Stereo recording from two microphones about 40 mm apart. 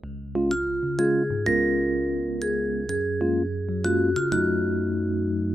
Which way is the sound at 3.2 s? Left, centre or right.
Centre.